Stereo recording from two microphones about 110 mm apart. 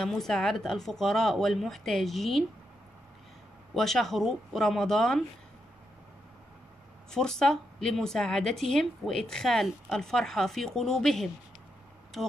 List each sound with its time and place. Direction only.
0.0 s a woman's voice: 5° left (ahead or behind)
3.7 s a woman's voice: centre (ahead or behind)
7.1 s a woman's voice: 5° left (ahead or behind)